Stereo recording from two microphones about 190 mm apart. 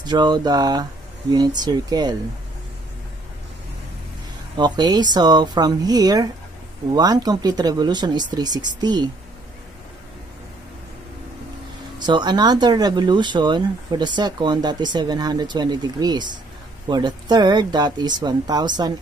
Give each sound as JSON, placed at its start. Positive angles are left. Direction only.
{"t": 0.0, "sound": "speech", "side_deg": -20}
{"t": 4.6, "sound": "speech", "side_deg": -20}
{"t": 12.0, "sound": "speech", "side_deg": -25}